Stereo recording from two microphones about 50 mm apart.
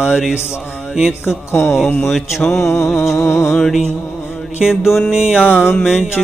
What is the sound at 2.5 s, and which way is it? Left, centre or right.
Mantra, left.